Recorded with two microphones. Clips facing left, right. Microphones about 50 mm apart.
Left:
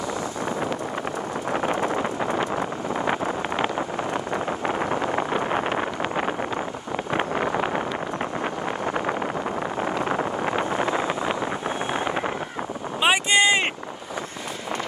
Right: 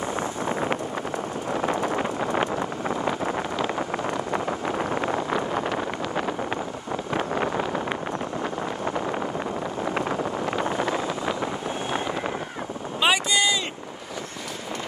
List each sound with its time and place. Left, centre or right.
0.5 s vehicle: right
1.5 s wind noise: left
2.5 s vehicle: left
8.8 s vehicle: left
13.0 s wind noise: left